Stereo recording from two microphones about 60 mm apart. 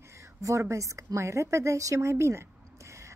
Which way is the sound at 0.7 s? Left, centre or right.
Right.